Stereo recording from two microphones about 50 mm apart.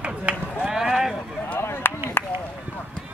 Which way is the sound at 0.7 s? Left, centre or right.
Centre.